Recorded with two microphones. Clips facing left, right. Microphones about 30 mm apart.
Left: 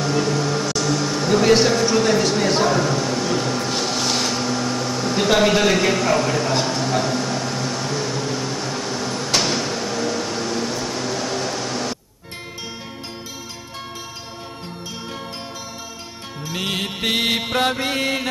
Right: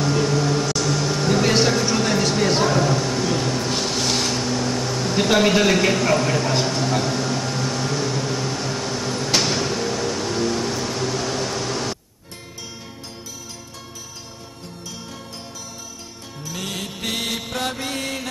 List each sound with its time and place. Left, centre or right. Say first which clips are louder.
0.0 s air conditioning: even; centre
16.4 s music: left 5 dB; left